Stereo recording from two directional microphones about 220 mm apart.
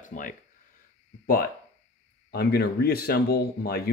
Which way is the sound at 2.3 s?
45° left (ahead or behind).